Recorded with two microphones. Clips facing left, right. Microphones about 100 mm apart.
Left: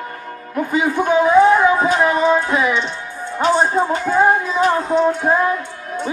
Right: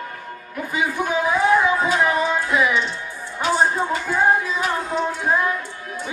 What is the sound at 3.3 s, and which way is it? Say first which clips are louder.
Child singing: left 4 dB; 35° left (ahead or behind).